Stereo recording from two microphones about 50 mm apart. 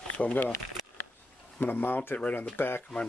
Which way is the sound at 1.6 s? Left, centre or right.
Left.